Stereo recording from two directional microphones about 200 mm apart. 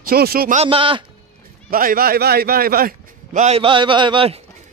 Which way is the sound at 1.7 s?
45° right (ahead or behind).